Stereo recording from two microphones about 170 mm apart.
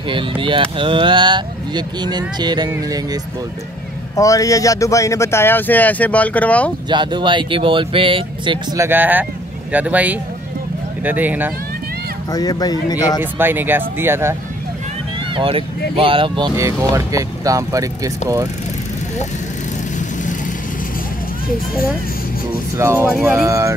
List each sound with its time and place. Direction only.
0.1 s speech: 30° right (ahead or behind)
4.2 s speech: 20° left (ahead or behind)
6.9 s speech: 25° right (ahead or behind)
8.7 s speech: 15° right (ahead or behind)
12.3 s speech: 25° left (ahead or behind)
13.2 s speech: 10° right (ahead or behind)
15.3 s speech: 30° right (ahead or behind)
22.8 s speech: 15° right (ahead or behind)
23.1 s speech: centre (ahead or behind)
23.4 s speech: 20° right (ahead or behind)